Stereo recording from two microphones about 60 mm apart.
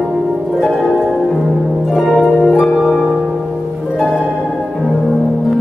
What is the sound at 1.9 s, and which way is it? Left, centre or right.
Harp, centre.